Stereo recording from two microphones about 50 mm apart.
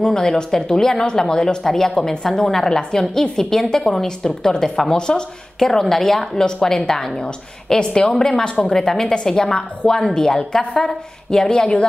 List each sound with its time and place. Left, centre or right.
0.0 s speech: centre